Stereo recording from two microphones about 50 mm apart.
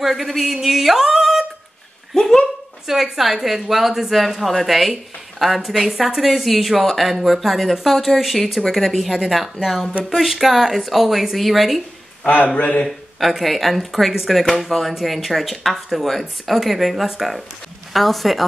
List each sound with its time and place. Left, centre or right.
0.0 s speech: centre
2.1 s speech: centre
2.9 s a woman's voice: centre
12.3 s a man's voice: left
13.3 s a woman's voice: centre